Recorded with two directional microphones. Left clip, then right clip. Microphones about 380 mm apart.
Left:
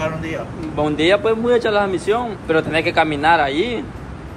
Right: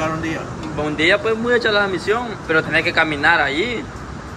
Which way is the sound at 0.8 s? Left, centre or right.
Centre.